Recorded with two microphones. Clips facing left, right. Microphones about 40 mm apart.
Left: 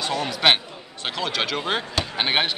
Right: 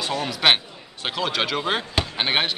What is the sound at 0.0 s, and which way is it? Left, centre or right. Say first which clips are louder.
Speech: even; centre.